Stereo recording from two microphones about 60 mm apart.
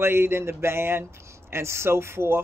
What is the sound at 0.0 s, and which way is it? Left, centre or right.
Speech, right.